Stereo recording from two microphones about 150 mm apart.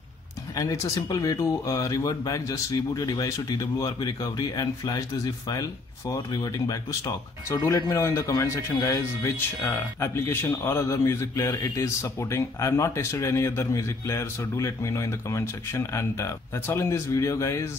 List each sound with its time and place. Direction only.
0.6 s speech: 20° left (ahead or behind)